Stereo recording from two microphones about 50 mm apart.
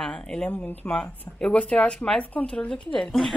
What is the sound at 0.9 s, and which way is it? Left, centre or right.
A woman's voice, left.